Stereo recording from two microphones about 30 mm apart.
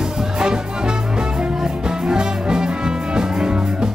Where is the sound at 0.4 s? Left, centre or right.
Right.